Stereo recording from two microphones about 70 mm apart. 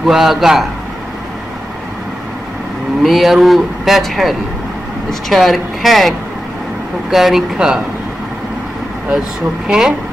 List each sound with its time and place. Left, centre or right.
0.0 s speech: centre
3.0 s speech: centre
9.7 s speech: centre